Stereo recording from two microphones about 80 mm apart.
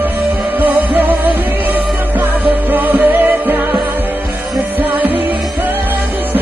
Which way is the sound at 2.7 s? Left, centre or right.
Right.